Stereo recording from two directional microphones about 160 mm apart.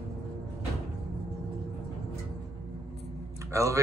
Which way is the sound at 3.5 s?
20° right (ahead or behind).